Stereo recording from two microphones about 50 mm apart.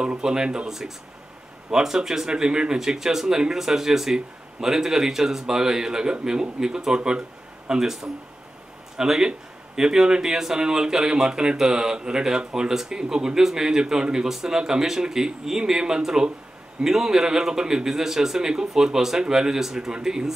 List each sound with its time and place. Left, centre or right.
0.0 s speech: centre